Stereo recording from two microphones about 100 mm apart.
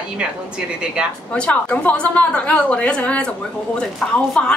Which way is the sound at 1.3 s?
10° left (ahead or behind).